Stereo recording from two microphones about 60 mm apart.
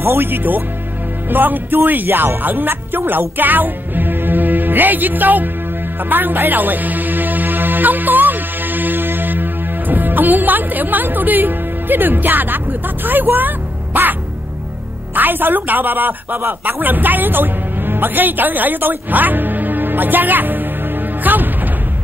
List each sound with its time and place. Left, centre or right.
0.0 s speech: right
6.0 s music: right
15.1 s speech: right